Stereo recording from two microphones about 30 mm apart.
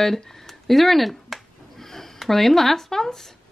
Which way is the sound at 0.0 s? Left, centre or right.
Centre.